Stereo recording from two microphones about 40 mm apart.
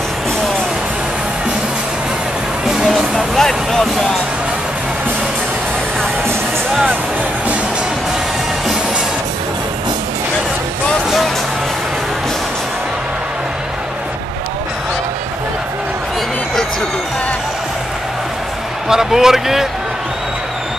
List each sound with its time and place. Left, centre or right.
2.6 s music: centre
3.2 s speech: centre
18.9 s speech: centre